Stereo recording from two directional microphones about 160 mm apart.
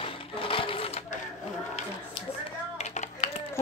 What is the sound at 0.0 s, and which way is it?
Sewing machine, 35° left (ahead or behind).